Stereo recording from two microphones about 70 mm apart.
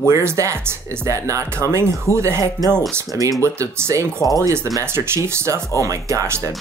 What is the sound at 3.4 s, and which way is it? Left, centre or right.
Speech, right.